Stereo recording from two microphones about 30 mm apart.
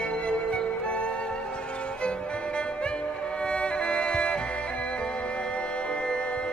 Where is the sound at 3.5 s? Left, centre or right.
Left.